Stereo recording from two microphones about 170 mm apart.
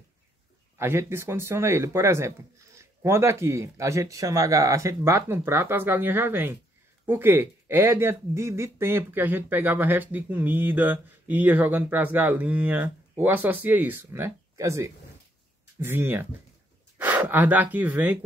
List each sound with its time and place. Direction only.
0.7 s speech: 15° right (ahead or behind)